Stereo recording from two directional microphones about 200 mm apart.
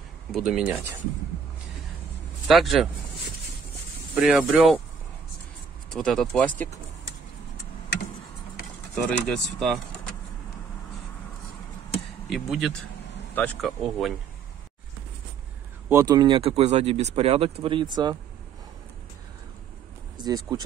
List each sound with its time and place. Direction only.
0.3 s speech: 5° right (ahead or behind)
2.4 s speech: centre (ahead or behind)
4.1 s speech: 5° right (ahead or behind)
5.9 s speech: centre (ahead or behind)
8.9 s speech: centre (ahead or behind)
12.3 s speech: centre (ahead or behind)
15.9 s speech: 15° right (ahead or behind)
20.2 s speech: 20° right (ahead or behind)